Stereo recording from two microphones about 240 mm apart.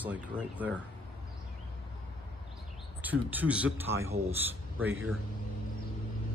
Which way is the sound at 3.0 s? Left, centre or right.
Centre.